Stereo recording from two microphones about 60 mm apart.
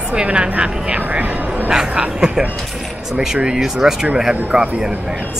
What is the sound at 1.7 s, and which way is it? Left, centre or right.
A woman's voice, centre.